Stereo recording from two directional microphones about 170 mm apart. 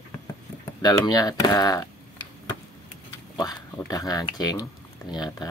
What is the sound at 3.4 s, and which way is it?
Speech, 20° left (ahead or behind).